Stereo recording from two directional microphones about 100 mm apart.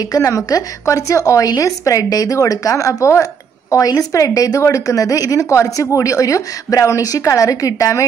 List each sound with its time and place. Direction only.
0.0 s a woman's voice: 35° left (ahead or behind)